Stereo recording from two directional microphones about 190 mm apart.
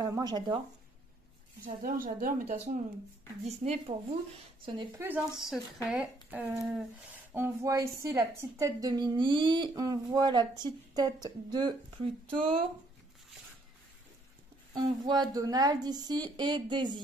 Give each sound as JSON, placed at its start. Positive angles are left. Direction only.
{"t": 0.0, "sound": "speech", "side_deg": -20}
{"t": 1.6, "sound": "a woman's voice", "side_deg": -50}
{"t": 3.4, "sound": "speech", "side_deg": -35}
{"t": 4.9, "sound": "speech", "side_deg": -10}
{"t": 14.7, "sound": "speech", "side_deg": -20}